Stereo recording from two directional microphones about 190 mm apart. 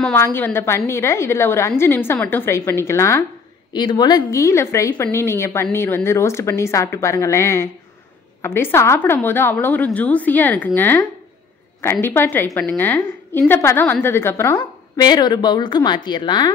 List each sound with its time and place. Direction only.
0.0 s a woman's voice: 10° left (ahead or behind)